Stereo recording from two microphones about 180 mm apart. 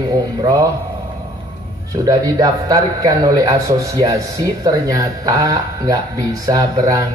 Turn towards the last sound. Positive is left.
turn(degrees=-20)  # may be behind; listen again after turning